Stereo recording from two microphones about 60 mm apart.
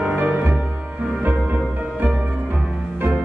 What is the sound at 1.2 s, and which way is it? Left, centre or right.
Music, right.